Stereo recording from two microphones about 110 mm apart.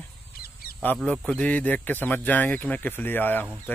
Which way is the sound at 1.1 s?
10° left (ahead or behind).